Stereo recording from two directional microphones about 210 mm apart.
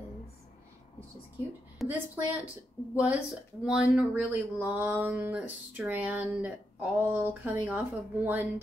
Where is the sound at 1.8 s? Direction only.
5° right (ahead or behind).